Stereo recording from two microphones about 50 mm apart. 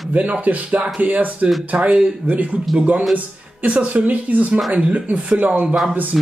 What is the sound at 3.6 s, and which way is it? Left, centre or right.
Speech, right.